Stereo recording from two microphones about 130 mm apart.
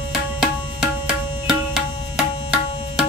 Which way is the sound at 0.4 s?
5° right (ahead or behind).